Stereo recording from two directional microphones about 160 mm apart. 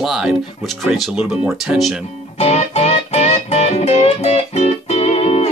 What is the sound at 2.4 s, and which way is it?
Music, 40° left (ahead or behind).